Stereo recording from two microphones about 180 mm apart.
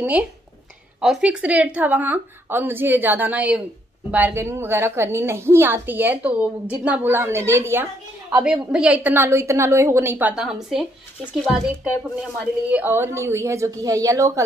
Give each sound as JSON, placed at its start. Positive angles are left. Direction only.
{"t": 0.0, "sound": "a woman's voice", "side_deg": -5}